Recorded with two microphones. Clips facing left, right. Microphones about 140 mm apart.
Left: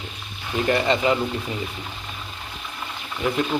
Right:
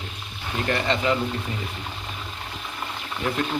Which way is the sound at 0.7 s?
15° left (ahead or behind).